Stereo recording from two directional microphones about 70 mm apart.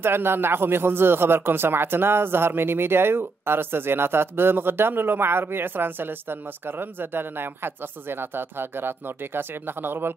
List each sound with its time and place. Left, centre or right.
0.0 s speech: right